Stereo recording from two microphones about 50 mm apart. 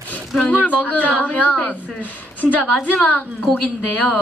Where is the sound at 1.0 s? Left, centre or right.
Left.